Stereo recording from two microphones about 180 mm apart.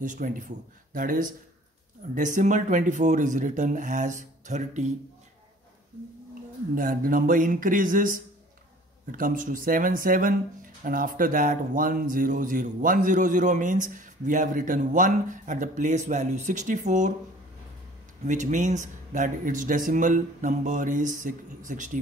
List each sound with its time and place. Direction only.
0.0 s speech: 45° right (ahead or behind)
6.7 s speech: 50° right (ahead or behind)
18.2 s speech: 45° right (ahead or behind)